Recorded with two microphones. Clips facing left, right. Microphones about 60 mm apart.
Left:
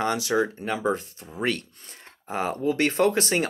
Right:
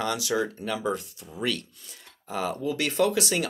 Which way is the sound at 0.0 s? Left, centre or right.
Left.